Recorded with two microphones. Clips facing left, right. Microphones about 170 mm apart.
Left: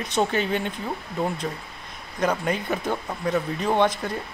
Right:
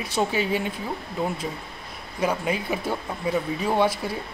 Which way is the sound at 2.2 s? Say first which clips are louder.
Left 1 dB; 5° right (ahead or behind).